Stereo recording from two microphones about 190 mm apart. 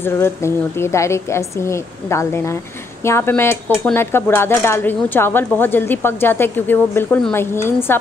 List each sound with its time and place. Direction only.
0.0 s speech: 15° left (ahead or behind)